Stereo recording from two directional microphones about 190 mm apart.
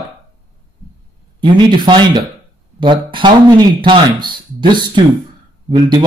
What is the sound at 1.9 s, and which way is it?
A man's voice, 25° right (ahead or behind).